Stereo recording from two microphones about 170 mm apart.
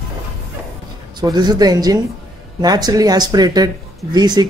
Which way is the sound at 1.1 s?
25° right (ahead or behind).